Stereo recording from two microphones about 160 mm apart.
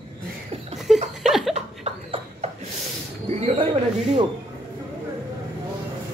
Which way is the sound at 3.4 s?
40° right (ahead or behind).